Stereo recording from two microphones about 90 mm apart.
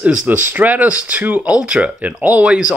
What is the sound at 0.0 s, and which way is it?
Speech, 15° right (ahead or behind).